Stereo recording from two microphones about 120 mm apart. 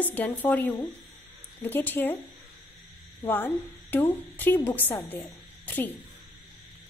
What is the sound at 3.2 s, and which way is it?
A woman's voice, 15° left (ahead or behind).